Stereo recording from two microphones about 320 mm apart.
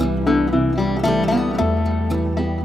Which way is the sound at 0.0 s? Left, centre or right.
Centre.